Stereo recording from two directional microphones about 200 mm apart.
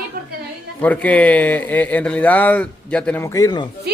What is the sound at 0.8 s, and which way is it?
A woman's voice, 5° left (ahead or behind).